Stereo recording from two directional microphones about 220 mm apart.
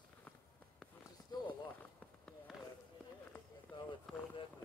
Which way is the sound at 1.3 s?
20° left (ahead or behind).